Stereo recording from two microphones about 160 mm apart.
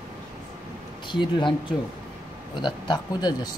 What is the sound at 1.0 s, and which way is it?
Speech, 30° left (ahead or behind).